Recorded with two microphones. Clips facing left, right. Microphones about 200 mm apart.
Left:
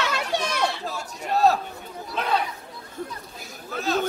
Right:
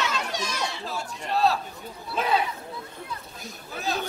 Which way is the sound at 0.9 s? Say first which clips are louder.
Left 2 dB; 40° left (ahead or behind).